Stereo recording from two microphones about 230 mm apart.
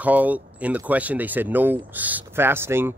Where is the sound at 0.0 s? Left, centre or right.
Centre.